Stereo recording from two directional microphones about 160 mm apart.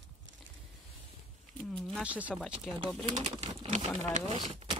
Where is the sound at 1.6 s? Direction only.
5° left (ahead or behind).